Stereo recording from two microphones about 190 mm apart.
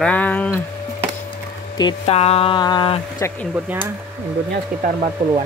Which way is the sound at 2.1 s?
30° left (ahead or behind).